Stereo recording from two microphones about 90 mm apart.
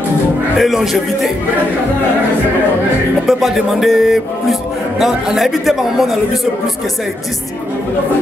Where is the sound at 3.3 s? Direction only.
Centre (ahead or behind).